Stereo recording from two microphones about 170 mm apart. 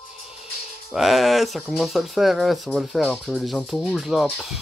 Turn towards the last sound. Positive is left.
turn(degrees=0)  # may be behind; listen again after turning